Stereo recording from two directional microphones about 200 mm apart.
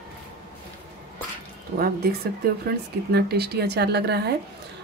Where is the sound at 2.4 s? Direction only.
50° right (ahead or behind).